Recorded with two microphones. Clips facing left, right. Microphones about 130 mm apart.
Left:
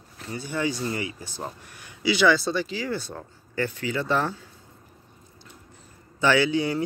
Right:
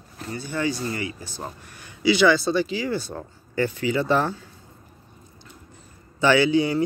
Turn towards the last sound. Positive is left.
turn(degrees=0)  # may be behind; listen again after turning